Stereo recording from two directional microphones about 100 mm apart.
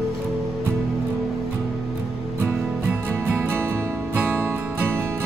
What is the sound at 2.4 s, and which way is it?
Music, 20° right (ahead or behind).